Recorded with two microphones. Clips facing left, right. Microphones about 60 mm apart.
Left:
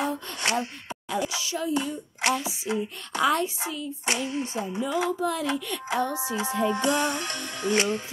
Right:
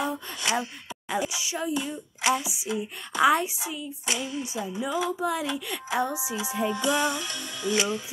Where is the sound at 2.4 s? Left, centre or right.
Left.